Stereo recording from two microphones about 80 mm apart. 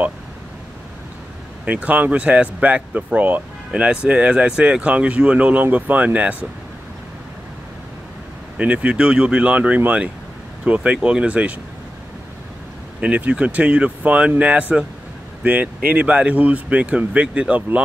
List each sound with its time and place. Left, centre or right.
1.7 s speech: centre
8.5 s speech: centre
13.0 s speech: centre